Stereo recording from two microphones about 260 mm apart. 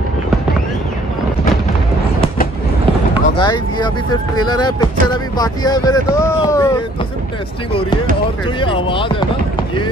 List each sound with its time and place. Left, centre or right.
3.3 s speech: centre
8.5 s speech: centre